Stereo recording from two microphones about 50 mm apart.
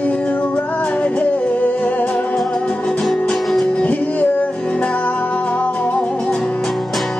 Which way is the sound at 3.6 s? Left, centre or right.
Left.